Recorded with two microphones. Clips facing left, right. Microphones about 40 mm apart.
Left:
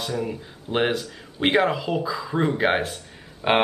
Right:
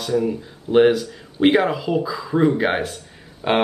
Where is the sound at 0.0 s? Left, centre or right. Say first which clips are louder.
Right 7 dB; centre.